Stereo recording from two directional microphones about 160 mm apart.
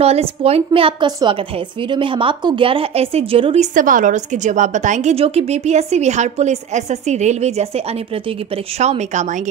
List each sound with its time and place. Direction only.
0.0 s a woman's voice: 40° right (ahead or behind)
3.7 s a woman's voice: 55° right (ahead or behind)